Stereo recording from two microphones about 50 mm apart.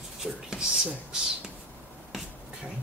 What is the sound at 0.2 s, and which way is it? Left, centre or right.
Speech, centre.